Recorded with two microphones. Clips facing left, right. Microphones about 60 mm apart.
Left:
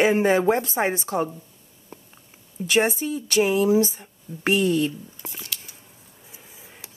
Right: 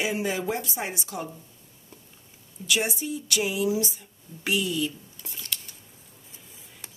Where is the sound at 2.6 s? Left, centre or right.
Left.